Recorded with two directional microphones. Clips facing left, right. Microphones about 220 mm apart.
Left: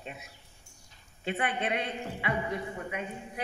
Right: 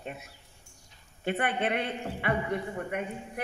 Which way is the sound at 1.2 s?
55° right (ahead or behind).